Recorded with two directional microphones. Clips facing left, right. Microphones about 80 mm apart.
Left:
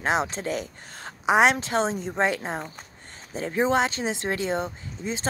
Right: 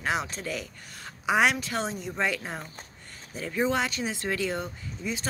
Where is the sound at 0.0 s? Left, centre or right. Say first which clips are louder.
Left 5 dB; left.